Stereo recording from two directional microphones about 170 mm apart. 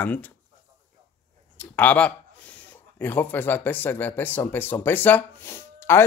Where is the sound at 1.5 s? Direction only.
10° left (ahead or behind).